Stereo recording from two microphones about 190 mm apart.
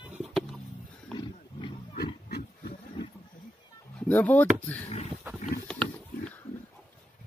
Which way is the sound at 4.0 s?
10° left (ahead or behind).